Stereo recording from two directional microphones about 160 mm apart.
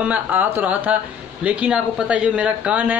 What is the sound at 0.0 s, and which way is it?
Speech, 10° right (ahead or behind).